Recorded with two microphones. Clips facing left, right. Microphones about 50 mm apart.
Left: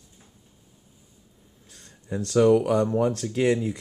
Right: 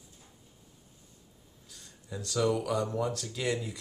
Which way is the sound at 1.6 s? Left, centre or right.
Left.